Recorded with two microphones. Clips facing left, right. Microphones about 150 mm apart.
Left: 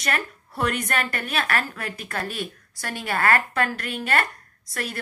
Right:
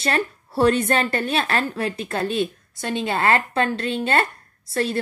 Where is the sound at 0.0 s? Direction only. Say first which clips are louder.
Right 5 dB; 30° right (ahead or behind).